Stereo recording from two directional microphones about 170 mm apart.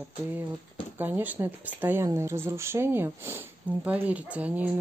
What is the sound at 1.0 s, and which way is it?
Speech, 10° right (ahead or behind).